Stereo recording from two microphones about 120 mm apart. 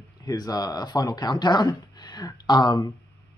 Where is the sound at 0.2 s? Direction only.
35° left (ahead or behind).